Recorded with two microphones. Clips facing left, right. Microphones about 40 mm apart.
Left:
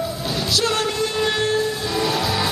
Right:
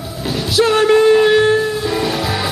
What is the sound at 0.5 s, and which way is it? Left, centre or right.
Music, centre.